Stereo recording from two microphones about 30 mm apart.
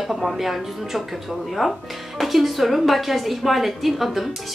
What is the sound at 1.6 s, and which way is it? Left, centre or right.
Speech, centre.